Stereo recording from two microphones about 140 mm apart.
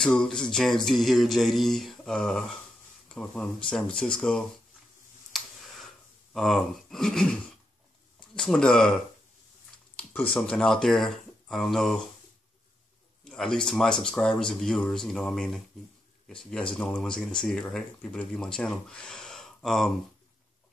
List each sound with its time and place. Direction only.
0.0 s speech: 5° left (ahead or behind)
5.3 s a sound: centre (ahead or behind)
6.3 s speech: centre (ahead or behind)
8.4 s speech: 5° left (ahead or behind)
10.3 s speech: 5° left (ahead or behind)
13.2 s speech: 5° left (ahead or behind)